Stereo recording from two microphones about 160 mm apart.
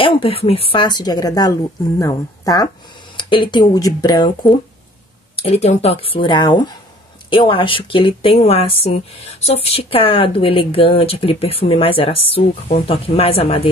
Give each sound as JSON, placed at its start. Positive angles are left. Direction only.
{"t": 0.0, "sound": "a woman's voice", "side_deg": 35}
{"t": 5.3, "sound": "speech", "side_deg": 40}